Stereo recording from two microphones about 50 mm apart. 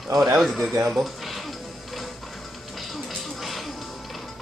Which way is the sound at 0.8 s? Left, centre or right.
Centre.